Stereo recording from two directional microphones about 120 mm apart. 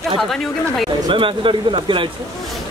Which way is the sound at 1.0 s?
45° right (ahead or behind).